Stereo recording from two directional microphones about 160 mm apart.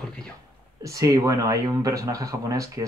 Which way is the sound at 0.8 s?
20° right (ahead or behind).